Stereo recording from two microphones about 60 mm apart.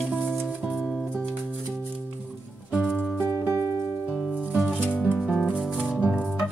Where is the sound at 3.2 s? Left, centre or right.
Right.